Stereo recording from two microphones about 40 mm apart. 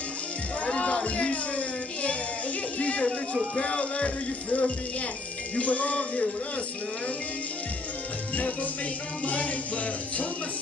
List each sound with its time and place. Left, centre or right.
0.7 s speech: left
2.8 s music: left
3.5 s speech: left
9.2 s speech: left